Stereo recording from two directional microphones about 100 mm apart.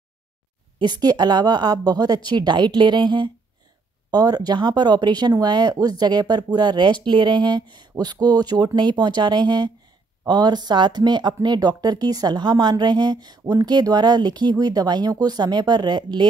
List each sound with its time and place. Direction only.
0.7 s speech: 45° right (ahead or behind)